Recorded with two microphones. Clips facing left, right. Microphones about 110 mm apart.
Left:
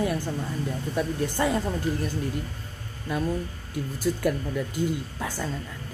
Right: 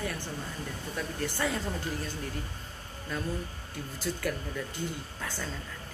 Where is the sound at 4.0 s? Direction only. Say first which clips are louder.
Left 7 dB; 20° left (ahead or behind).